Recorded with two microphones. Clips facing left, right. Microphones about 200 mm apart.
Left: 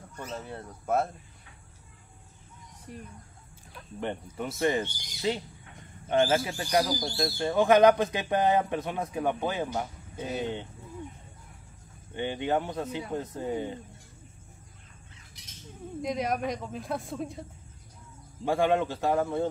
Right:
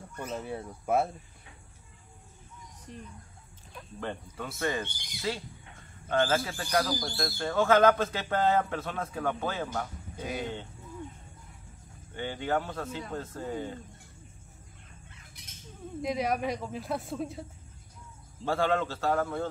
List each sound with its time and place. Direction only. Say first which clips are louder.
0.2 s speech: right 2 dB; 10° right (ahead or behind)
2.9 s speech: left 2 dB; 10° left (ahead or behind)
4.0 s speech: left 4 dB; 20° left (ahead or behind)
10.1 s speech: left 2 dB; 10° right (ahead or behind)
10.4 s speech: left 3 dB; 15° left (ahead or behind)
12.2 s speech: left 2 dB; 20° left (ahead or behind)
16.0 s speech: even; centre (ahead or behind)
18.4 s speech: left 3 dB; 15° left (ahead or behind)